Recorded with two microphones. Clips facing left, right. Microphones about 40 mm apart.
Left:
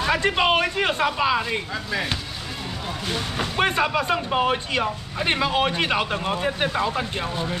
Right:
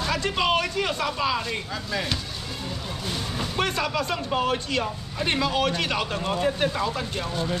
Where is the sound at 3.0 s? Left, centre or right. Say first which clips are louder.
Left 4 dB; left.